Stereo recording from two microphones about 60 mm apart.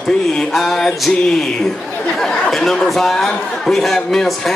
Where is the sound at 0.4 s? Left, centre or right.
Centre.